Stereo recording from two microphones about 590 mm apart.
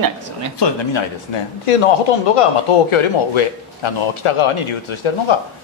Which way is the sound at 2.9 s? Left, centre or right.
Left.